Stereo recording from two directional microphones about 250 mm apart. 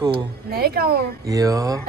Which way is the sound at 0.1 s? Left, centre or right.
Right.